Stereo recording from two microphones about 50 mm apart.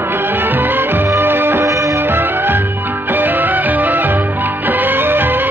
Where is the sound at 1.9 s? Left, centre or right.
Right.